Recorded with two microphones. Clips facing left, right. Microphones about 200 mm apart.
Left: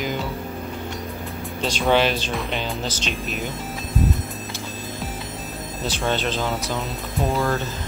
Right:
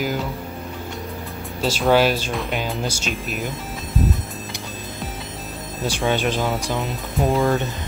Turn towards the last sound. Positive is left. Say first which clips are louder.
# right 3 dB
turn(degrees=0)  # may be behind; listen again after turning